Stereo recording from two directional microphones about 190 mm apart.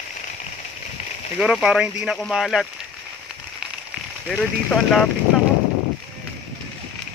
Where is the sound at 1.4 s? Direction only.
5° right (ahead or behind).